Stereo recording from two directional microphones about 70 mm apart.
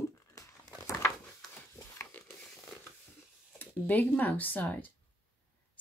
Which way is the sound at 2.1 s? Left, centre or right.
Left.